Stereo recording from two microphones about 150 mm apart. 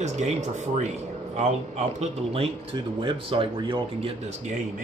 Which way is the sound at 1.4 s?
50° right (ahead or behind).